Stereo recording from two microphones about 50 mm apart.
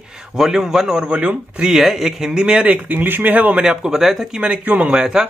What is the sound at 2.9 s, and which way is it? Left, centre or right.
Speech, right.